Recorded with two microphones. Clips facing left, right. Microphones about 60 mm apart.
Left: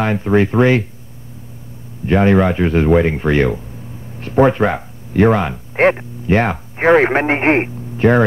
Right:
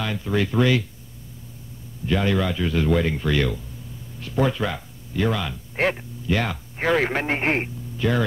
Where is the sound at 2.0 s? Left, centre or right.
Left.